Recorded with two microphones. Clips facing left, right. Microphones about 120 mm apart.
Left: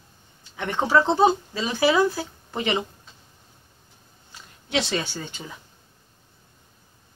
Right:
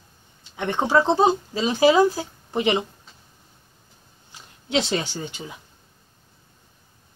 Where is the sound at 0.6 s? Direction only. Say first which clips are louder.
Right 1 dB; 20° right (ahead or behind).